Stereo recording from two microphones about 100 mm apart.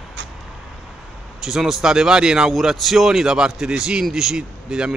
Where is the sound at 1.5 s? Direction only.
5° right (ahead or behind).